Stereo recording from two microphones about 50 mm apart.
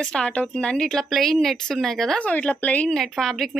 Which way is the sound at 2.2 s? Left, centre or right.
Left.